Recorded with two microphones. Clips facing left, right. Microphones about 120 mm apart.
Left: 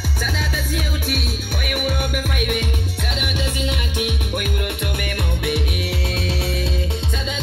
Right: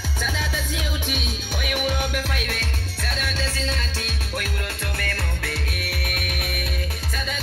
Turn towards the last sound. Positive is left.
turn(degrees=20)  # may be behind; listen again after turning